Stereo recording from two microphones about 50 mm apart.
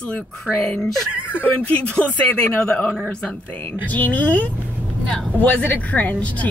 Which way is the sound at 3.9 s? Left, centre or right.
Left.